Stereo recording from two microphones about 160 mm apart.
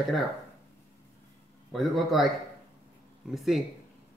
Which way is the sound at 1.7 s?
Centre (ahead or behind).